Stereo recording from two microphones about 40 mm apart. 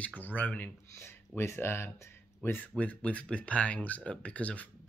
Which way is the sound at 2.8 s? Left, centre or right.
Left.